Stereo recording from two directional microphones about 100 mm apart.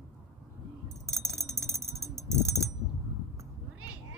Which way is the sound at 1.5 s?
30° right (ahead or behind).